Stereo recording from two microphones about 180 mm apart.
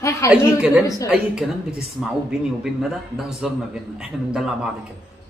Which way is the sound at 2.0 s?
5° right (ahead or behind).